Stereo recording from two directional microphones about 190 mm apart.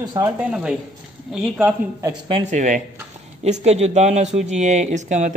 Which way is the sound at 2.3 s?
40° right (ahead or behind).